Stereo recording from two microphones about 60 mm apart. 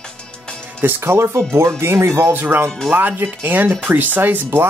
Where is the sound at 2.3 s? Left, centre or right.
Right.